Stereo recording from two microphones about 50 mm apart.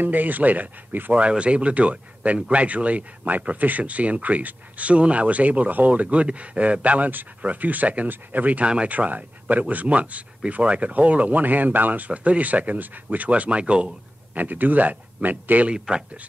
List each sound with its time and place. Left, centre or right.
0.0 s speech: right
1.1 s speech: right
8.6 s speech: right
8.9 s speech: right
14.3 s speech: right
15.7 s a man's voice: centre